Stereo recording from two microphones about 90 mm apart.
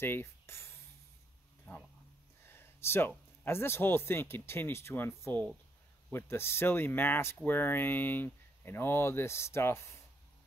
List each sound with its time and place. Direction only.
0.0 s speech: 25° left (ahead or behind)
2.4 s a sound: 25° left (ahead or behind)
3.4 s speech: 25° left (ahead or behind)